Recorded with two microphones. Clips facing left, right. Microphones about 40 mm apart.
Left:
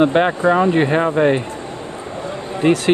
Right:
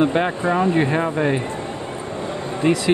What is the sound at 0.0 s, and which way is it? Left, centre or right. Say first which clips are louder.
Speech: left 4 dB; left.